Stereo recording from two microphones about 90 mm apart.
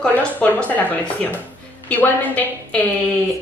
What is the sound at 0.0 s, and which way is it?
A woman's voice, 15° left (ahead or behind).